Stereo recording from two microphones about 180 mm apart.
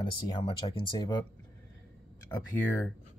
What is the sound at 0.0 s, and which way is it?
Speech, 25° left (ahead or behind).